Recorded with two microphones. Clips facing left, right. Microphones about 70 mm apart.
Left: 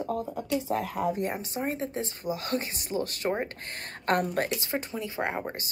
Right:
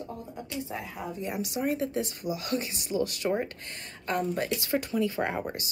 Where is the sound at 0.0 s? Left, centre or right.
Left.